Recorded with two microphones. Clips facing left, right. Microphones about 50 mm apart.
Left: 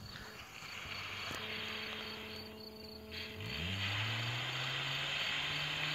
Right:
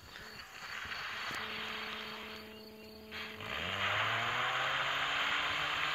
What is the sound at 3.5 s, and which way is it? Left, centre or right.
Vehicle, right.